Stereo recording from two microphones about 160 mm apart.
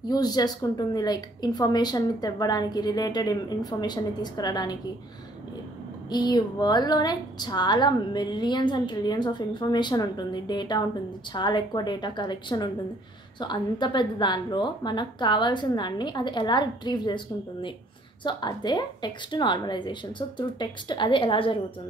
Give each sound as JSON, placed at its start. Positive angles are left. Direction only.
{"t": 0.1, "sound": "a woman's voice", "side_deg": 25}
{"t": 6.0, "sound": "a woman's voice", "side_deg": 25}